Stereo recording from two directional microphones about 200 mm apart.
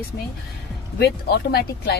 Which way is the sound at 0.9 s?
50° left (ahead or behind).